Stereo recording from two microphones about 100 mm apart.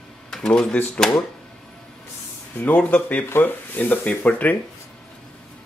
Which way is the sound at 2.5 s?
15° left (ahead or behind).